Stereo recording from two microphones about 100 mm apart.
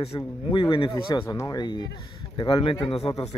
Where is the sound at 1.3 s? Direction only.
35° left (ahead or behind).